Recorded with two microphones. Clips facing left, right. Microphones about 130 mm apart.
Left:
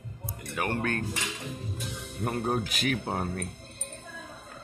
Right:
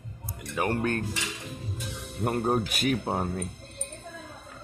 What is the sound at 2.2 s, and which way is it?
Speech, 40° right (ahead or behind).